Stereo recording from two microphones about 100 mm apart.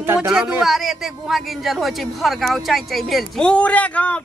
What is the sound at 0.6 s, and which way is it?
A man's voice, 5° right (ahead or behind).